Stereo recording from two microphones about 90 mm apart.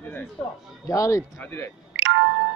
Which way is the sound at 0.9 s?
35° left (ahead or behind).